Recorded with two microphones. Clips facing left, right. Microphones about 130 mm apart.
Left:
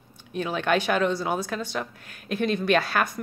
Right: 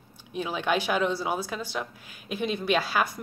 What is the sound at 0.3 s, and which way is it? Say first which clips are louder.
Speech: left 3 dB; 10° right (ahead or behind).